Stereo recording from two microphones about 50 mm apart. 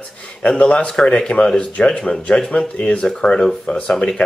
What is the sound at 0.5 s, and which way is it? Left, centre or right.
Speech, left.